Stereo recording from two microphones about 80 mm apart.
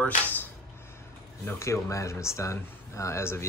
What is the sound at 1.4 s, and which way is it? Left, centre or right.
Speech, left.